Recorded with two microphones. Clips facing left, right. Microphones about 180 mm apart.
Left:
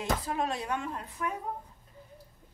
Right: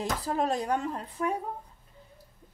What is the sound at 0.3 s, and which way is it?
A woman's voice, 40° right (ahead or behind).